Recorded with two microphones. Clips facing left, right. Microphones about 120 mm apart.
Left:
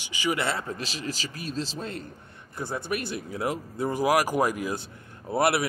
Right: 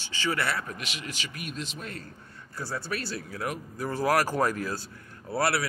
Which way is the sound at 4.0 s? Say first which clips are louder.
Left 1 dB; 15° left (ahead or behind).